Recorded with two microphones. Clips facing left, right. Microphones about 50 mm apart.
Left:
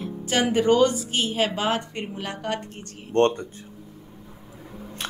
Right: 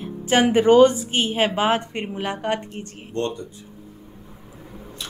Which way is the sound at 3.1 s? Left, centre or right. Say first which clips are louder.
Left 7 dB; left.